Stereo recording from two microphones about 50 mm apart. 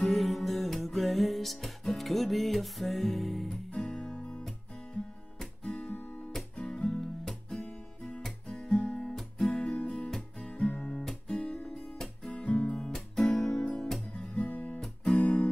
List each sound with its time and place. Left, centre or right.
0.0 s music: centre
3.7 s music: centre
5.4 s guitar: centre
6.7 s music: centre
8.2 s guitar: centre
8.6 s music: centre
14.1 s guitar: centre
14.4 s guitar: left
15.0 s music: left